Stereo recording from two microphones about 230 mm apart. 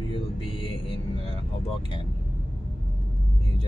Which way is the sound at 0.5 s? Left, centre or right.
Left.